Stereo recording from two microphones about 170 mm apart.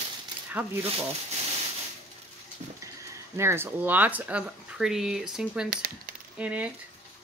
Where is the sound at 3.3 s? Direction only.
15° right (ahead or behind).